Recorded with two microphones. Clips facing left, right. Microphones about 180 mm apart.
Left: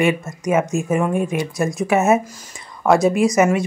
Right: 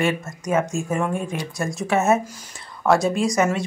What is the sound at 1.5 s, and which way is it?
Speech, centre (ahead or behind).